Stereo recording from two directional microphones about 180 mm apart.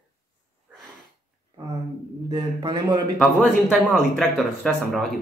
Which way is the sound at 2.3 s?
25° right (ahead or behind).